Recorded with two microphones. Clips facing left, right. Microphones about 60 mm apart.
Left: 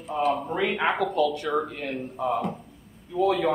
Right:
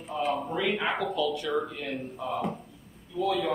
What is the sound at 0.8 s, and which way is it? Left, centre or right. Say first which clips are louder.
Speech: left 5 dB; left.